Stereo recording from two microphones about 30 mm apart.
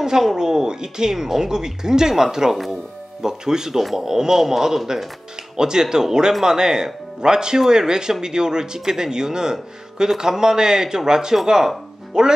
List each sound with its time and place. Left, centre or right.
0.0 s speech: centre